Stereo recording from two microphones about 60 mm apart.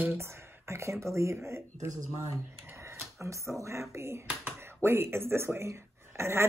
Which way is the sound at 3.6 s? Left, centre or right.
Right.